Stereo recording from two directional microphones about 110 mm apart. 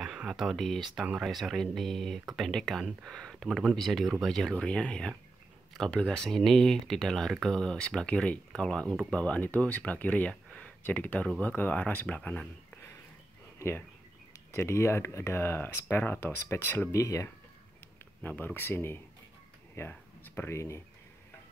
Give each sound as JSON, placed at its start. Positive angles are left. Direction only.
{"t": 0.0, "sound": "speech", "side_deg": -5}
{"t": 13.6, "sound": "speech", "side_deg": 20}
{"t": 18.2, "sound": "speech", "side_deg": 15}